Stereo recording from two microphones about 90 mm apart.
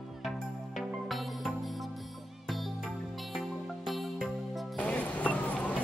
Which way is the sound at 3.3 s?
Centre (ahead or behind).